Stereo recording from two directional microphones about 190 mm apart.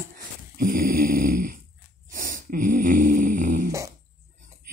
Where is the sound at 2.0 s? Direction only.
45° right (ahead or behind).